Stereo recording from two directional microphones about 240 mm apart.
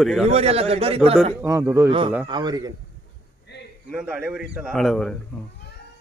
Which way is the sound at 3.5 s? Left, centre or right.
Left.